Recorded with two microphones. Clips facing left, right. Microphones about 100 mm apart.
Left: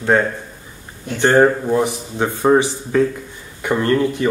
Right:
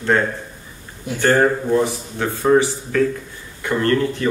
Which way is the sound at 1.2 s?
20° left (ahead or behind).